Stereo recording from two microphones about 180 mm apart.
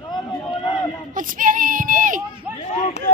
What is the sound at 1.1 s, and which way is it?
Speech, 50° right (ahead or behind).